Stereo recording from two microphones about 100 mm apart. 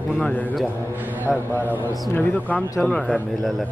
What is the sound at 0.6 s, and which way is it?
Speech, 15° right (ahead or behind).